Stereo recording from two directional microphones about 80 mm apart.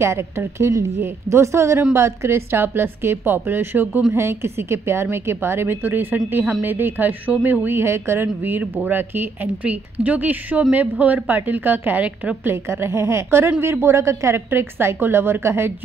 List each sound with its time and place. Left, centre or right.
0.0 s a woman's voice: right
12.4 s a woman's voice: right